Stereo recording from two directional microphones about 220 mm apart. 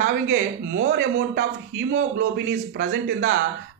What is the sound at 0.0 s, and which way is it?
Speech, 45° right (ahead or behind).